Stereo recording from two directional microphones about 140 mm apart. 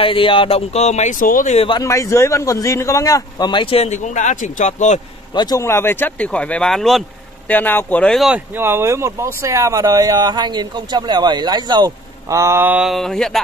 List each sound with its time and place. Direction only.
0.0 s speech: 40° left (ahead or behind)
1.2 s speech: 85° left
1.7 s a man's voice: 25° left (ahead or behind)
3.7 s speech: 50° left (ahead or behind)
5.3 s speech: 30° left (ahead or behind)
5.6 s speech: 20° left (ahead or behind); by 7.0 s 5° left (ahead or behind)
7.4 s speech: 15° left (ahead or behind)
8.5 s speech: 15° right (ahead or behind); by 13.4 s 5° left (ahead or behind)